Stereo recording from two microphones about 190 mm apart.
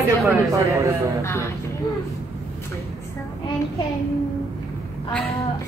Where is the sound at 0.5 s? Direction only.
15° right (ahead or behind).